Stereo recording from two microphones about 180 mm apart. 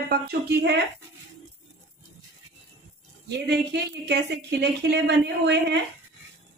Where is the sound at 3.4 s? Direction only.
65° right (ahead or behind).